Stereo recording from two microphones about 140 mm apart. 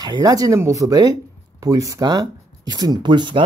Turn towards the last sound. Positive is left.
turn(degrees=-35)  # may be behind; listen again after turning